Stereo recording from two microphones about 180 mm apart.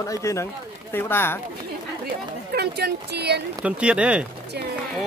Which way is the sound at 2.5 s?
65° right (ahead or behind).